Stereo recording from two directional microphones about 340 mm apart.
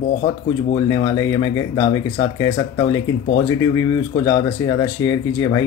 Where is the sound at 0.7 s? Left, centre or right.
Centre.